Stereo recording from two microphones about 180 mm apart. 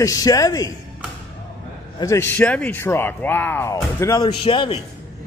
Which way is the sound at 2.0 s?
15° left (ahead or behind).